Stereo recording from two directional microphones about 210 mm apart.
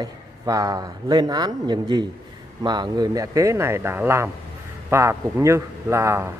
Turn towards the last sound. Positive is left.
turn(degrees=-10)  # may be behind; listen again after turning